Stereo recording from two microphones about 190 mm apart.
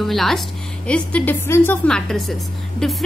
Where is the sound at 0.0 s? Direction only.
Centre (ahead or behind).